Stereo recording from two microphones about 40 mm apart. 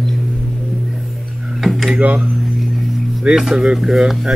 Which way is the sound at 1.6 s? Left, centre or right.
Centre.